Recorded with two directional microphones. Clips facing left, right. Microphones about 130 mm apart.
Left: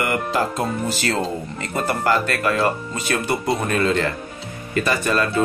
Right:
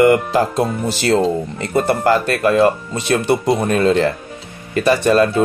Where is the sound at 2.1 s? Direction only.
40° right (ahead or behind).